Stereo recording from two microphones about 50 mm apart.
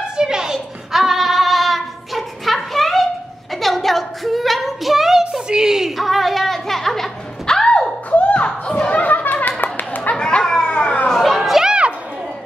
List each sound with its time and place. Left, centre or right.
0.2 s child singing: centre
3.6 s a sound: centre
8.1 s a sound: left
10.1 s dog: centre
10.8 s children playing: left
11.1 s children playing: centre